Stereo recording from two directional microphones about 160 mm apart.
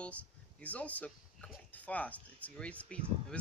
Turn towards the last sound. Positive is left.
turn(degrees=10)  # may be behind; listen again after turning